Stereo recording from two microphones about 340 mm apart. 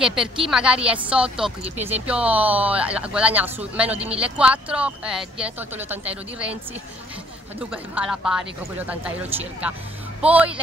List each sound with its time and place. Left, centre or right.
0.0 s speech: centre
7.7 s speech: centre